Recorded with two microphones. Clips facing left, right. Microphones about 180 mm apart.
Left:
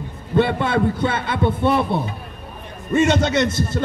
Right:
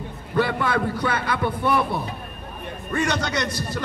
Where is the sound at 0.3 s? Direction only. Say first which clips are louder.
Left 4 dB; 25° left (ahead or behind).